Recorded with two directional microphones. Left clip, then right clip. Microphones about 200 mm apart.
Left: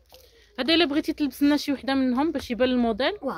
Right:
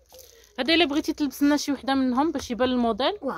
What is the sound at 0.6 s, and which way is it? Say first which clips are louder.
Speech: even; centre (ahead or behind).